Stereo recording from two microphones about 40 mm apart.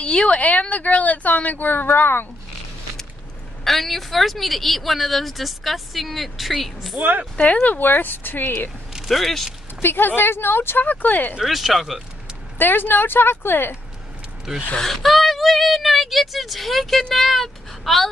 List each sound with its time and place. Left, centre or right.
0.0 s a woman's voice: left
0.4 s speech: left
3.6 s a woman's voice: centre
7.0 s speech: right
7.3 s speech: left
7.8 s speech: left
8.9 s speech: centre
9.8 s a woman's voice: left
10.9 s speech: left
11.4 s a woman's voice: centre
12.5 s a woman's voice: left
14.5 s speech: centre
14.8 s a woman's voice: centre